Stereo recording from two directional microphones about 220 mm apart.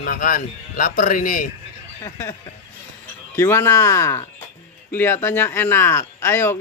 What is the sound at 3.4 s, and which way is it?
Speech, 10° left (ahead or behind).